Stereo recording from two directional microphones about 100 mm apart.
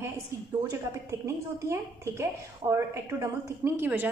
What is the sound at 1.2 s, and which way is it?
A woman's voice, 30° right (ahead or behind).